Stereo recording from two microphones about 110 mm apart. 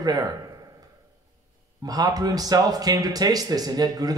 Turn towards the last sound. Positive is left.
turn(degrees=-35)  # may be behind; listen again after turning